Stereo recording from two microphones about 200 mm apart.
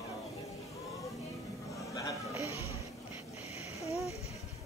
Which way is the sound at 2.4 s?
15° right (ahead or behind).